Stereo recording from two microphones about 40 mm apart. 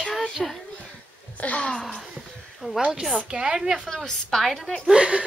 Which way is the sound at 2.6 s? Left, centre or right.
Right.